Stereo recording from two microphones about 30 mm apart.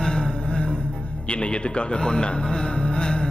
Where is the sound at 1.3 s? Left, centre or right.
Left.